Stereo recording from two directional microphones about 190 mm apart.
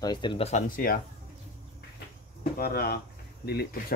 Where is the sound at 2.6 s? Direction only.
55° left (ahead or behind).